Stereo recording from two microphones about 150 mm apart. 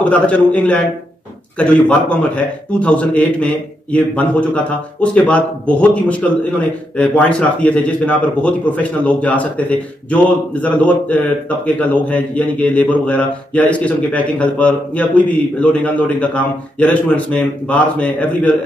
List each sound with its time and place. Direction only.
0.1 s speech: 10° left (ahead or behind)